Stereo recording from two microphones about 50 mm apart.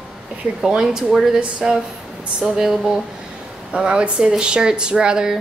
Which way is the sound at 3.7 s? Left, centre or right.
Right.